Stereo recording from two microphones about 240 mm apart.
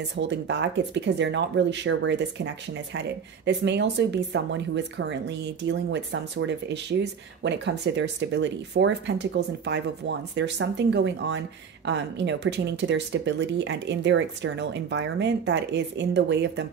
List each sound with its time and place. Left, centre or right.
0.1 s speech: right